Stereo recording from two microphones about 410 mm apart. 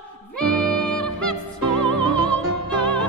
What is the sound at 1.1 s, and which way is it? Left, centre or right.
Music, left.